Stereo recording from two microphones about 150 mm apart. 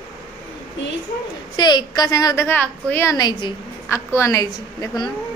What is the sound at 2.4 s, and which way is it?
A woman's voice, 10° left (ahead or behind).